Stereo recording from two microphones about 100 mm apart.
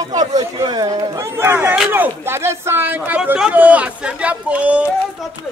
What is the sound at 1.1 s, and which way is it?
Speech, 25° right (ahead or behind).